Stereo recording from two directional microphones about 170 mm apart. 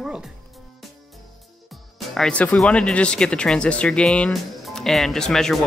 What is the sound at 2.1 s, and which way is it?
Speech, 5° left (ahead or behind).